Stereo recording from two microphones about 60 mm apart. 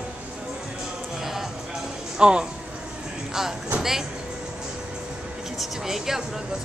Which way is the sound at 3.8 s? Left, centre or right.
Centre.